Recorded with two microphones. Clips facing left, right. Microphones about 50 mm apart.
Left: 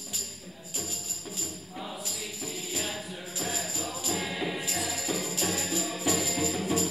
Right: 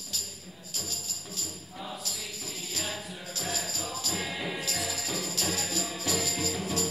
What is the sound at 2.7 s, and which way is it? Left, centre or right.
Music, centre.